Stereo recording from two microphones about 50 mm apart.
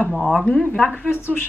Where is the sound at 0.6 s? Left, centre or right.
Centre.